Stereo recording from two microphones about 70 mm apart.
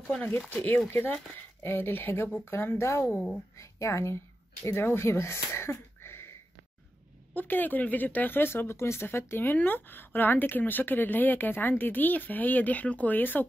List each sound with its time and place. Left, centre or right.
0.1 s speech: left
3.2 s speech: centre
3.5 s speech: left
7.3 s speech: left